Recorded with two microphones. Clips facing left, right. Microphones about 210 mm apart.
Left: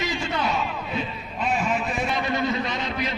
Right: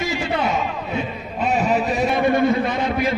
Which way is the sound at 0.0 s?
35° right (ahead or behind).